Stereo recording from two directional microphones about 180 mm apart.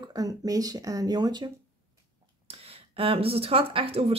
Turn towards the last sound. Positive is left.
turn(degrees=-35)  # may be behind; listen again after turning